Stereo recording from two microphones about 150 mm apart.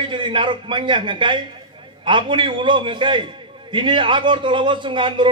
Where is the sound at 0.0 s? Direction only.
30° right (ahead or behind).